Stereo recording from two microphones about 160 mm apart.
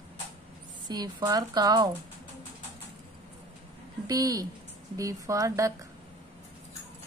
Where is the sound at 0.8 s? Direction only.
25° right (ahead or behind).